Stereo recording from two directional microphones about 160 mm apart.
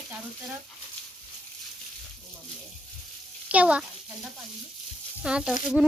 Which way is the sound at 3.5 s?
10° right (ahead or behind).